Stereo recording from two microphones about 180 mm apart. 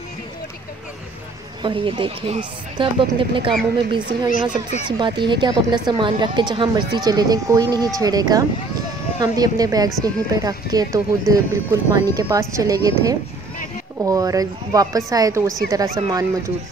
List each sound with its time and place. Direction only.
1.6 s speech: 30° right (ahead or behind)
4.3 s speech: 45° left (ahead or behind)
4.8 s speech: 25° right (ahead or behind)